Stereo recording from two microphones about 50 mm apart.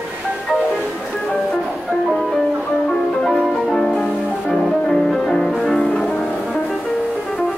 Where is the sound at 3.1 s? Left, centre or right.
Centre.